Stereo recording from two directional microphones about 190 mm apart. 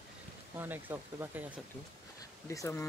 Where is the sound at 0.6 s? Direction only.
10° right (ahead or behind).